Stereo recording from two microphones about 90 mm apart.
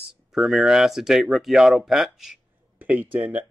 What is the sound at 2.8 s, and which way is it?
Speech, 20° right (ahead or behind).